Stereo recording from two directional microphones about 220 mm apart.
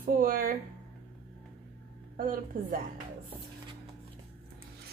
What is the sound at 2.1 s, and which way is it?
Speech, 40° right (ahead or behind).